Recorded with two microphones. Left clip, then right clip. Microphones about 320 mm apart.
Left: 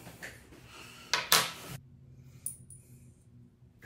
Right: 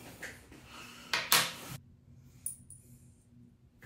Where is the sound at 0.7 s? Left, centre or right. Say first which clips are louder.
Right 1 dB; right.